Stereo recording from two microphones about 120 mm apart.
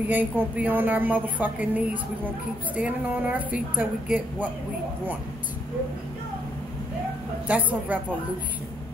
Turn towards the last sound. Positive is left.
turn(degrees=-15)  # may be behind; listen again after turning